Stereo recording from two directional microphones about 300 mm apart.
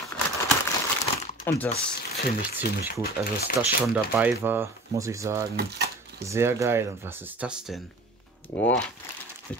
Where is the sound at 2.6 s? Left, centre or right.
Left.